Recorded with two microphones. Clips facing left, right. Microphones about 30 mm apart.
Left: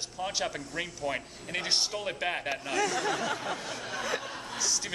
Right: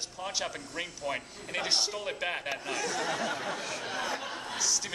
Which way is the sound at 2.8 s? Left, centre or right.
Left.